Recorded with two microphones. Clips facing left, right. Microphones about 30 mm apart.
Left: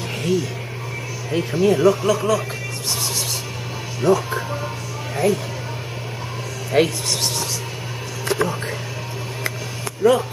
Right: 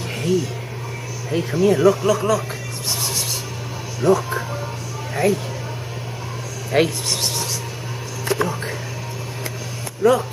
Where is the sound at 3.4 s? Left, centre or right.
Centre.